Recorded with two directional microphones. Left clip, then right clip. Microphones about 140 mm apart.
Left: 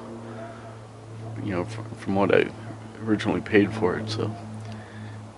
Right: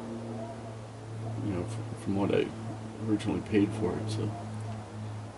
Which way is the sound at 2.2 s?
25° left (ahead or behind).